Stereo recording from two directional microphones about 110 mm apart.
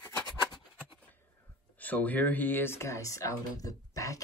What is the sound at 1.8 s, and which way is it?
Speech, 15° left (ahead or behind).